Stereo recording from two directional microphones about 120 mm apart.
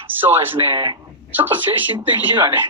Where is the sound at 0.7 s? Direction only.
40° right (ahead or behind).